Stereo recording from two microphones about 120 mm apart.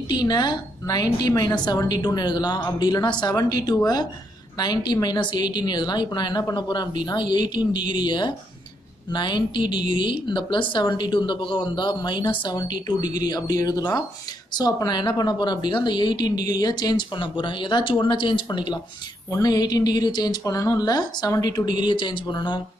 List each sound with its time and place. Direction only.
0.1 s a woman's voice: 35° left (ahead or behind)